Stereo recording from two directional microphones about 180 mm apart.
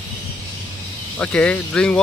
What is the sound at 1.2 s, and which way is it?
Speech, 5° left (ahead or behind).